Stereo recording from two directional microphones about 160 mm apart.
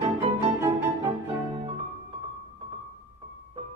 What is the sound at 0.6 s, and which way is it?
Music, 15° right (ahead or behind).